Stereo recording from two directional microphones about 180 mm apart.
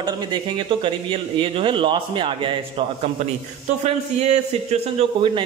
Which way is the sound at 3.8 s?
35° right (ahead or behind).